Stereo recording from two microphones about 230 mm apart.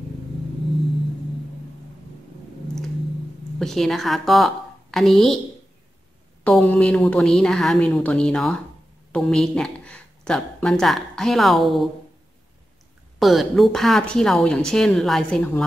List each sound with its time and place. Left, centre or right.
3.5 s speech: centre
6.4 s speech: centre
13.2 s speech: centre